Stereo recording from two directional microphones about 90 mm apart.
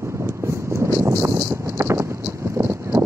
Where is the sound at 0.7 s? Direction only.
35° right (ahead or behind).